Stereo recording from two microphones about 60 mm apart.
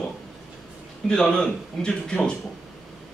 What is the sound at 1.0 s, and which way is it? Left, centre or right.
A man's voice, centre.